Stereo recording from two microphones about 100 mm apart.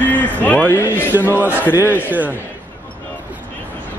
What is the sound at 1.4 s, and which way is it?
Speech, 20° right (ahead or behind).